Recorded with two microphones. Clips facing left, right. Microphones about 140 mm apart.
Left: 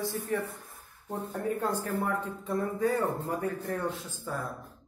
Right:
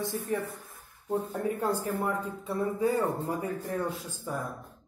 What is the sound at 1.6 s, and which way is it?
A man's voice, 10° right (ahead or behind).